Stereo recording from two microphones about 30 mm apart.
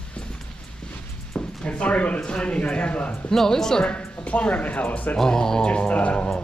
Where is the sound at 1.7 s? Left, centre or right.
Left.